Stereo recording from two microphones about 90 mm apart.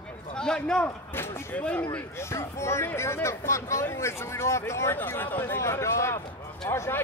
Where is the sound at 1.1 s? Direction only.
25° left (ahead or behind).